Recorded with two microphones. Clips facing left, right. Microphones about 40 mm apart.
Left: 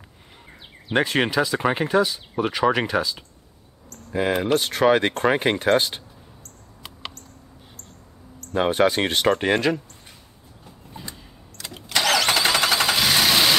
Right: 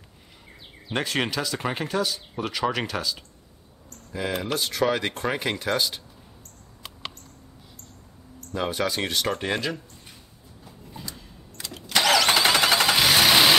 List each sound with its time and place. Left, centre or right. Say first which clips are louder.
0.9 s speech: left 6 dB; centre
4.2 s speech: left 6 dB; left
8.5 s speech: left 7 dB; left
11.0 s vehicle: left 1 dB; centre
11.6 s engine starting: left 1 dB; right
11.9 s vehicle: even; centre